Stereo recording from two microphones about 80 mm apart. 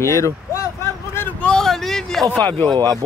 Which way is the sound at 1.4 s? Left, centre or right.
Centre.